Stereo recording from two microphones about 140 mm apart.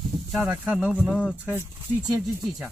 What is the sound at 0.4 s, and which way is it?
Speech, 10° right (ahead or behind).